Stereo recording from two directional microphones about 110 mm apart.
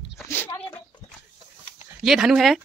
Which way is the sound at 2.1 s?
5° right (ahead or behind).